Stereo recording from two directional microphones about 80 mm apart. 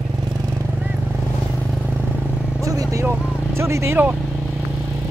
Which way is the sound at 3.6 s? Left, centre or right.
Right.